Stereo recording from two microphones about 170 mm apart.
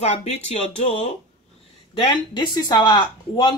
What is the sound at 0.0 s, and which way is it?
Speech, 40° left (ahead or behind).